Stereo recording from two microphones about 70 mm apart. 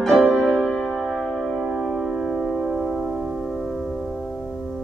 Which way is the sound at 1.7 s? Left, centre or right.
Centre.